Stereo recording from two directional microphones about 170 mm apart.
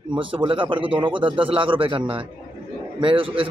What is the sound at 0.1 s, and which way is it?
Speech, 30° right (ahead or behind).